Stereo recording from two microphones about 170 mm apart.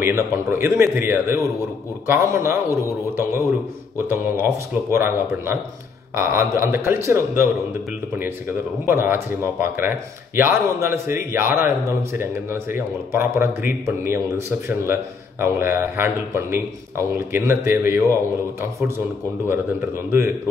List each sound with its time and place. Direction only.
0.0 s speech: 15° right (ahead or behind)
4.9 s speech: 15° right (ahead or behind)
19.4 s speech: 15° right (ahead or behind)